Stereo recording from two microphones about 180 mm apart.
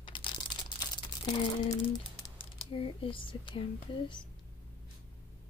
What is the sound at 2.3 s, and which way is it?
Speech, 30° left (ahead or behind).